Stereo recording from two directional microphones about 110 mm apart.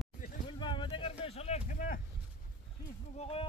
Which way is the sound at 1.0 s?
65° left (ahead or behind).